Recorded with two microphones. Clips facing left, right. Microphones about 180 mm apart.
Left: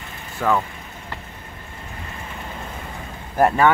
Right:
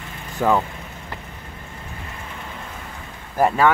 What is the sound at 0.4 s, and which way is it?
Speech, 15° right (ahead or behind).